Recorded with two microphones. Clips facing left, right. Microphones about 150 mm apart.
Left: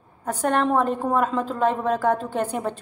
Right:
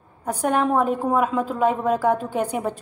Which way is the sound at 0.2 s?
10° right (ahead or behind).